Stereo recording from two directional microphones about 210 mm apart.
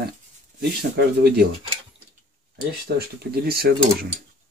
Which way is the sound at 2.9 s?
50° right (ahead or behind).